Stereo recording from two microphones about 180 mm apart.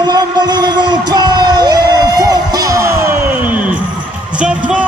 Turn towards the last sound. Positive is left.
turn(degrees=-5)  # may be behind; listen again after turning